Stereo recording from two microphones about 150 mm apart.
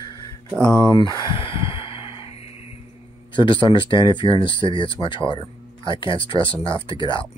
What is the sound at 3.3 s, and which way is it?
Speech, 35° left (ahead or behind).